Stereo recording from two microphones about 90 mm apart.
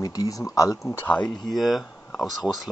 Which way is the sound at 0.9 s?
20° left (ahead or behind).